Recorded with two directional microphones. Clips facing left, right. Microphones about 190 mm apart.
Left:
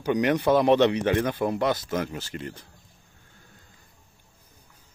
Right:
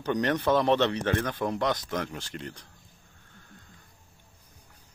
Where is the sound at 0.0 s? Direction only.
10° left (ahead or behind).